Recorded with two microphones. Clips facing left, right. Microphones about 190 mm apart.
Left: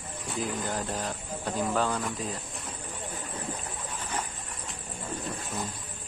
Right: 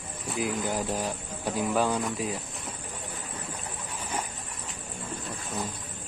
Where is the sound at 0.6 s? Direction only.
10° right (ahead or behind).